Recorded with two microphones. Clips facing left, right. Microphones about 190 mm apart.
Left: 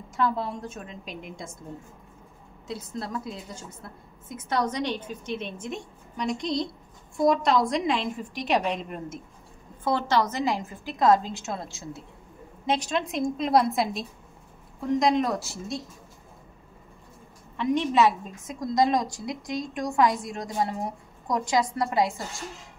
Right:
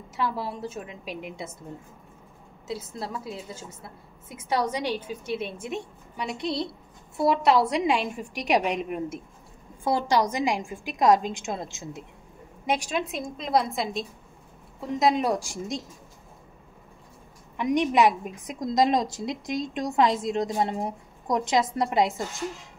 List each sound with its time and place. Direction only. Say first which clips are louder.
0.1 s a woman's voice: left 2 dB; 5° right (ahead or behind)
2.7 s a woman's voice: even; 5° right (ahead or behind)
17.6 s a woman's voice: right 1 dB; 15° right (ahead or behind)